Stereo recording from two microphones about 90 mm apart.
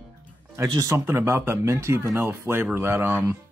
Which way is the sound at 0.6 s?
35° right (ahead or behind).